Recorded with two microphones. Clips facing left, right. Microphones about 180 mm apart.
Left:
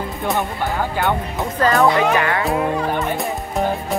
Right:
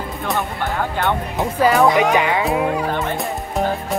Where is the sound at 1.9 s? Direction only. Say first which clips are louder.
Right 1 dB; 15° right (ahead or behind).